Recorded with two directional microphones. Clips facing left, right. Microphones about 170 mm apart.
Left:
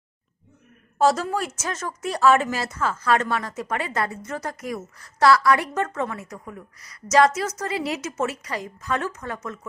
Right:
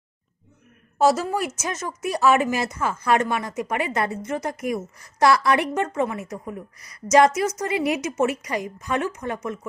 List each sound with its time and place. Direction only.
0.9 s speech: 10° right (ahead or behind)